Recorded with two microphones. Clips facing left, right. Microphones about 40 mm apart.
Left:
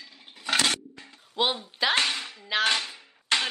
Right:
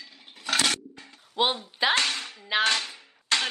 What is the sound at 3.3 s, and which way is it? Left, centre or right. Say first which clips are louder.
Music: even; left.